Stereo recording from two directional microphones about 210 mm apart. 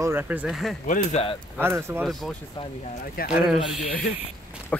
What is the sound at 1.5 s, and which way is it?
Speech, 10° right (ahead or behind).